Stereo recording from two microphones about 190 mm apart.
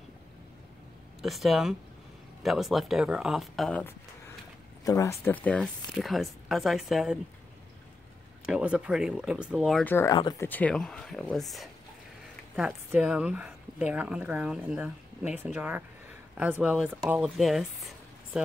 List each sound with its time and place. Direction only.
1.2 s speech: centre (ahead or behind)
4.8 s speech: 15° left (ahead or behind); by 7.2 s centre (ahead or behind)
8.5 s speech: 5° right (ahead or behind)
9.9 s speech: 20° left (ahead or behind)
10.5 s speech: 5° left (ahead or behind)